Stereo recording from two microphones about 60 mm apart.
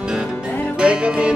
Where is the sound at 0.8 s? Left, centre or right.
Centre.